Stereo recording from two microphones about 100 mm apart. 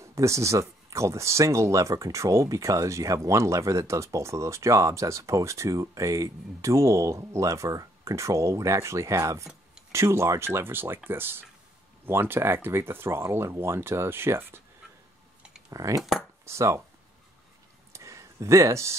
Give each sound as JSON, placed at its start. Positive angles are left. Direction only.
{"t": 0.0, "sound": "speech", "side_deg": -30}
{"t": 15.7, "sound": "speech", "side_deg": -35}
{"t": 17.9, "sound": "a sound", "side_deg": -30}